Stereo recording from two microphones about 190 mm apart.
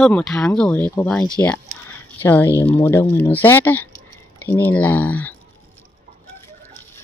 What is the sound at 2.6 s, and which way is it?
Speech, 15° left (ahead or behind).